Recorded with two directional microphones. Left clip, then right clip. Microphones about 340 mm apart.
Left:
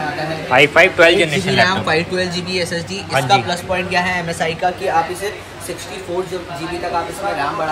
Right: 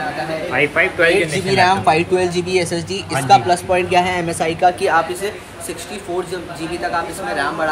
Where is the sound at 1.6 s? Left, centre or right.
Centre.